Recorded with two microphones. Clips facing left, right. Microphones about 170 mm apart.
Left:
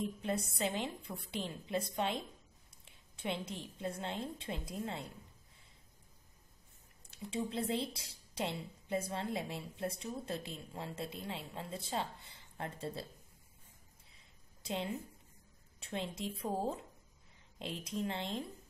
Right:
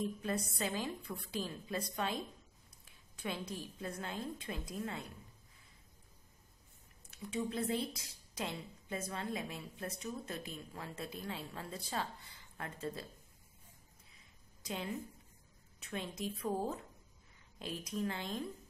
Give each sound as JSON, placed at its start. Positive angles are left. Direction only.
{"t": 0.2, "sound": "a woman's voice", "side_deg": 25}
{"t": 7.1, "sound": "a woman's voice", "side_deg": 30}
{"t": 14.6, "sound": "a woman's voice", "side_deg": 25}